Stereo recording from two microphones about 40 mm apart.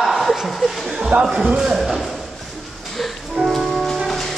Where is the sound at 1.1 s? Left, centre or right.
Right.